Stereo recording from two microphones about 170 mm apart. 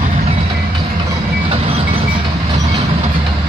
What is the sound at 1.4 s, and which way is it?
Train, 35° right (ahead or behind).